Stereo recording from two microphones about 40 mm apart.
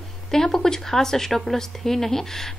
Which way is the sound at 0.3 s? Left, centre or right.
Centre.